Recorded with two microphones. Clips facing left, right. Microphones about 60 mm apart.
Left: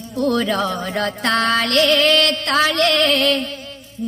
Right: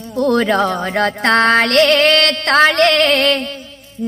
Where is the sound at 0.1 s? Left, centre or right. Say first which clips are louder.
Right 4 dB; right.